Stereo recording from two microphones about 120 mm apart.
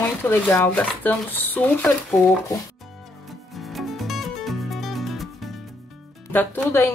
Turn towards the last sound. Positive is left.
turn(degrees=15)  # may be behind; listen again after turning